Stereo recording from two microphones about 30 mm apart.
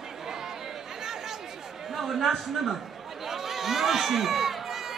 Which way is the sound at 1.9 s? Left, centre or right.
Centre.